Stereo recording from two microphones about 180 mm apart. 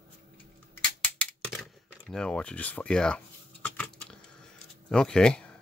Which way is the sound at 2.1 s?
5° left (ahead or behind).